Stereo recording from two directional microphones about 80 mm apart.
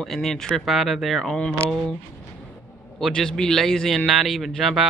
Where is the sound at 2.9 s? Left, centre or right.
Centre.